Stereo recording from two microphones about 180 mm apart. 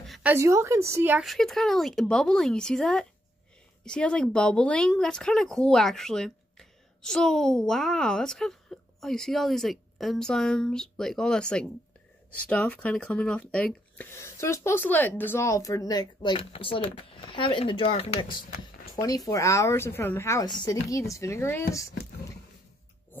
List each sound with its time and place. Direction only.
0.0 s a sound: centre (ahead or behind)
0.3 s a woman's voice: 15° right (ahead or behind)
1.2 s a woman's voice: centre (ahead or behind); by 18.4 s 35° left (ahead or behind)
18.9 s speech: 20° left (ahead or behind)